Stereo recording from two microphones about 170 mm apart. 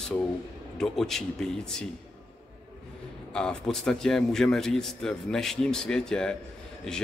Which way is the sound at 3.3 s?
5° left (ahead or behind).